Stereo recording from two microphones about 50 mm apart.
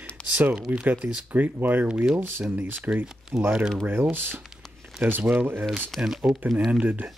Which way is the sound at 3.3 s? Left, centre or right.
Right.